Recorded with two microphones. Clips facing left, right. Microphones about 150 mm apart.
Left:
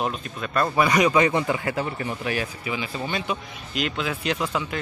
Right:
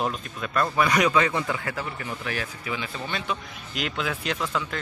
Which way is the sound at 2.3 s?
10° left (ahead or behind).